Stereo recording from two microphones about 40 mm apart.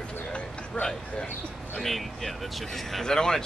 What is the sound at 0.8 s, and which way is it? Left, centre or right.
Speech, left.